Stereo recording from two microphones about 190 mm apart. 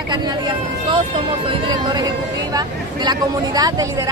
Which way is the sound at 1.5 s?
25° right (ahead or behind).